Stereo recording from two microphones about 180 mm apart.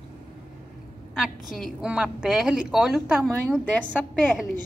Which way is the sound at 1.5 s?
Centre (ahead or behind).